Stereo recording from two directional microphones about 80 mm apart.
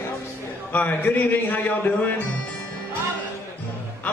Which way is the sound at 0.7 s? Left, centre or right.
Left.